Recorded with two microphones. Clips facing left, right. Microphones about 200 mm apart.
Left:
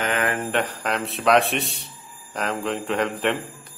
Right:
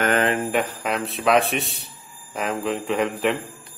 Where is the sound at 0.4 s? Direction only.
5° right (ahead or behind).